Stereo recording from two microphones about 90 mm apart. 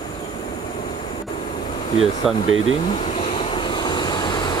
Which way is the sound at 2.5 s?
90° left.